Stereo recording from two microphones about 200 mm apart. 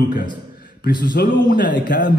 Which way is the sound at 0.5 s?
50° left (ahead or behind).